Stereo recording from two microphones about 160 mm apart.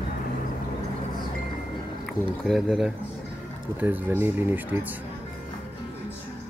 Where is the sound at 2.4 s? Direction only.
Centre (ahead or behind).